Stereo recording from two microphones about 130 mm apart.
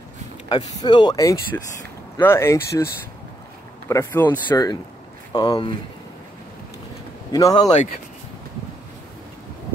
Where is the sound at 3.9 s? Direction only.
20° left (ahead or behind).